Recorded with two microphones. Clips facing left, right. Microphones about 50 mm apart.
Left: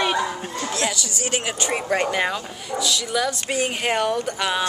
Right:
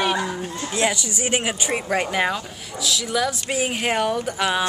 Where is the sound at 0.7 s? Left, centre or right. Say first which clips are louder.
Right 4 dB; right.